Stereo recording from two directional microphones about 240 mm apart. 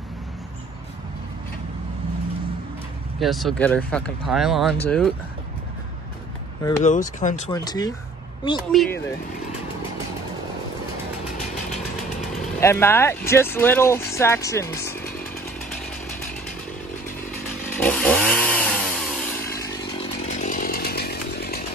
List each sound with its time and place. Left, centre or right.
3.2 s speech: centre
6.8 s speech: left
7.5 s speech: centre
8.7 s speech: centre
12.5 s speech: centre
17.7 s chainsaw: centre
20.2 s chainsaw: left